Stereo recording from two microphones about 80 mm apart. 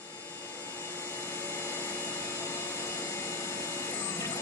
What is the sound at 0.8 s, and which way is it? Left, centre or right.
Helicopter, left.